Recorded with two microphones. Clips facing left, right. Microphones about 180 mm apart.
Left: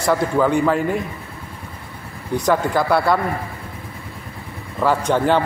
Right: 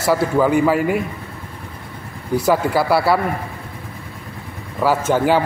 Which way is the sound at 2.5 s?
5° right (ahead or behind).